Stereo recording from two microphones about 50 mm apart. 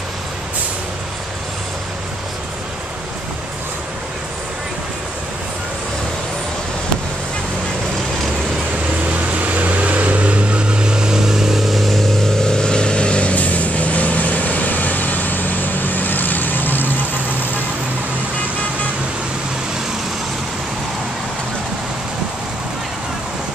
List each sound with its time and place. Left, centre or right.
9.0 s vehicle: right; by 17.5 s left